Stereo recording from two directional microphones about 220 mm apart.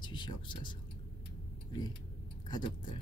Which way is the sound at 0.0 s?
20° left (ahead or behind).